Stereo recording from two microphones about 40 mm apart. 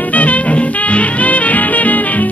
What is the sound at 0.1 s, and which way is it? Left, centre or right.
Music, left.